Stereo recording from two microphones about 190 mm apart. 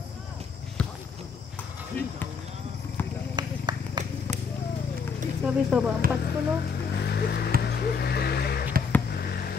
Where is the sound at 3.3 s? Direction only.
25° right (ahead or behind).